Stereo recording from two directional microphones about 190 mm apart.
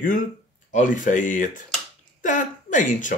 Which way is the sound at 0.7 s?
40° left (ahead or behind).